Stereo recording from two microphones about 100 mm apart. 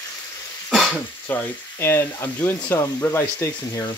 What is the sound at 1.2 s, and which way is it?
Speech, 25° left (ahead or behind).